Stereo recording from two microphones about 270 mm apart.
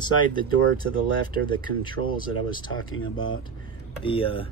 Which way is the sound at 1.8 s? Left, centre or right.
Centre.